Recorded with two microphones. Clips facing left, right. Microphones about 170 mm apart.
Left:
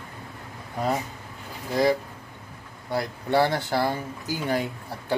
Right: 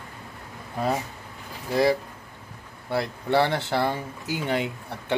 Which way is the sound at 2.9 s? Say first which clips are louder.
Right 1 dB; 25° right (ahead or behind).